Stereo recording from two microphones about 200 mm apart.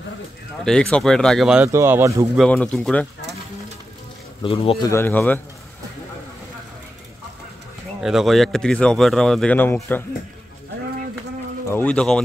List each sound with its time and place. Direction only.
0.7 s speech: 5° left (ahead or behind); by 2.2 s 15° right (ahead or behind)
2.3 s speech: 5° left (ahead or behind)
4.4 s speech: 25° left (ahead or behind)
4.9 s speech: 10° left (ahead or behind)
8.0 s speech: centre (ahead or behind)
11.7 s speech: 5° left (ahead or behind)